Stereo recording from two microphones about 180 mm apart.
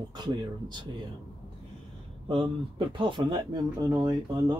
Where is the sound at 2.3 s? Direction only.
30° right (ahead or behind).